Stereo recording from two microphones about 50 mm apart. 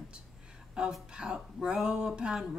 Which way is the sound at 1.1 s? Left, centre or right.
Centre.